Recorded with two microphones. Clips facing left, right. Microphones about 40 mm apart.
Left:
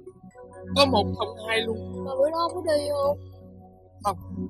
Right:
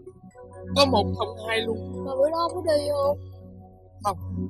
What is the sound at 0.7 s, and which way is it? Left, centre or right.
Speech, centre.